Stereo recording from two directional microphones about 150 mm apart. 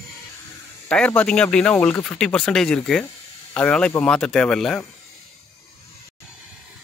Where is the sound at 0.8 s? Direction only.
10° left (ahead or behind).